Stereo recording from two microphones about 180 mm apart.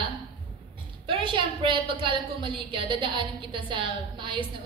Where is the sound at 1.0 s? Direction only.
30° right (ahead or behind).